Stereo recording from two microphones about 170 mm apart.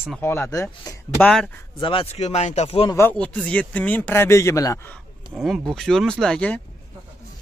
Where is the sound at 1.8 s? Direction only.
30° left (ahead or behind).